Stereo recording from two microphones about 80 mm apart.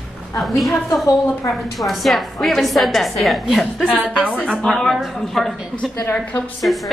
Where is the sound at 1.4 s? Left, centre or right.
Left.